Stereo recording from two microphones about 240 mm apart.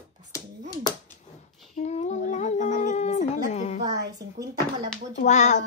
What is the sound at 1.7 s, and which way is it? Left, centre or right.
Humming, left.